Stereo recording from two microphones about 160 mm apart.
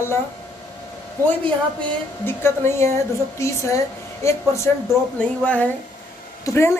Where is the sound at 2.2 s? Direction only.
15° left (ahead or behind).